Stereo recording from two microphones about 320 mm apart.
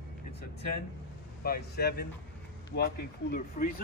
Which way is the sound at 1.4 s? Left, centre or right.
Left.